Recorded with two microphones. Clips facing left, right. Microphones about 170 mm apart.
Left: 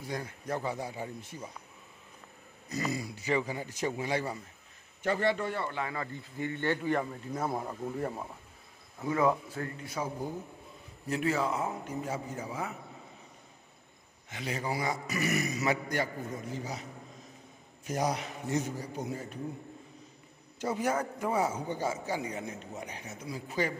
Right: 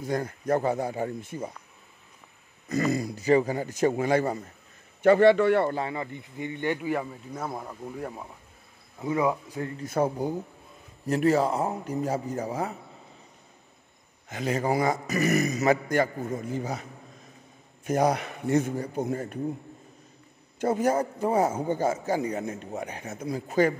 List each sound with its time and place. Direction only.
0.0 s a man's voice: 50° right (ahead or behind)
2.7 s a man's voice: 50° right (ahead or behind)
5.0 s a man's voice: 70° right (ahead or behind)
5.9 s speech: 20° right (ahead or behind)
7.4 s speech: 5° left (ahead or behind)
9.0 s speech: 15° right (ahead or behind)
9.8 s a man's voice: 60° right (ahead or behind)
11.1 s a man's voice: 40° right (ahead or behind)
14.3 s a man's voice: 45° right (ahead or behind)
17.8 s a man's voice: 55° right (ahead or behind)
20.5 s a man's voice: 50° right (ahead or behind)
20.9 s a man's voice: 30° right (ahead or behind)
21.3 s a man's voice: 50° right (ahead or behind)